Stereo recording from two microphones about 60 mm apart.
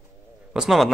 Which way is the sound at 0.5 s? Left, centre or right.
Centre.